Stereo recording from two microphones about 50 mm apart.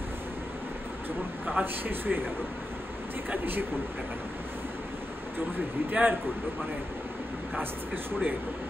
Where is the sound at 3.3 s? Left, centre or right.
Right.